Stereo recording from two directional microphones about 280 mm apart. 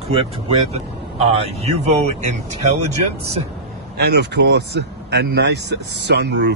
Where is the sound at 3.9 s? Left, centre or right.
Right.